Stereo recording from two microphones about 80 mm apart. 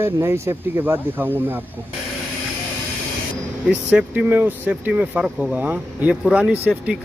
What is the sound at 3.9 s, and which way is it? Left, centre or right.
A man's voice, right.